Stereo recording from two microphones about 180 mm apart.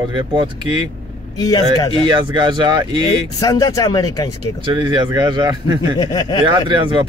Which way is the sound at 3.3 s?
20° left (ahead or behind).